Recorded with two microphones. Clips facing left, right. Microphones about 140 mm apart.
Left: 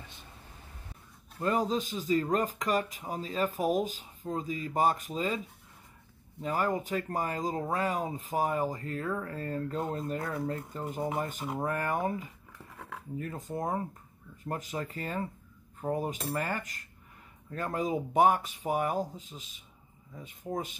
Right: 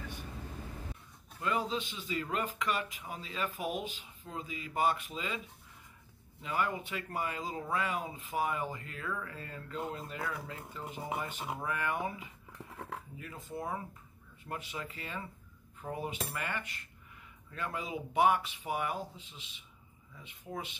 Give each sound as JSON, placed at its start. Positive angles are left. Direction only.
{"t": 1.4, "sound": "speech", "side_deg": 40}
{"t": 6.4, "sound": "speech", "side_deg": 40}